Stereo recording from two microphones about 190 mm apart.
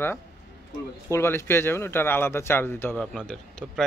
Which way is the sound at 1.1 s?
15° left (ahead or behind).